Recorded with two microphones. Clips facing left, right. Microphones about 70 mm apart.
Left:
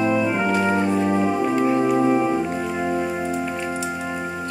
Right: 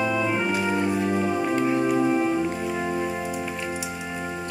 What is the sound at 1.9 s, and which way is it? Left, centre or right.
Music, centre.